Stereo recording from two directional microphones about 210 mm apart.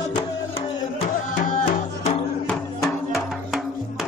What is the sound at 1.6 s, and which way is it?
Music, 30° left (ahead or behind).